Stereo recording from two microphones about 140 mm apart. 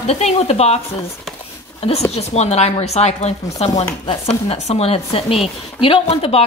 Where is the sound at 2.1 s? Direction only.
50° left (ahead or behind).